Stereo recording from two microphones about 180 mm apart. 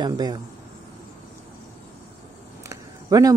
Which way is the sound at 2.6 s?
20° right (ahead or behind).